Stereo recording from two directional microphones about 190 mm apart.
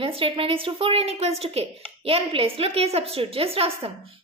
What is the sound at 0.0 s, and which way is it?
A woman's voice, 30° right (ahead or behind).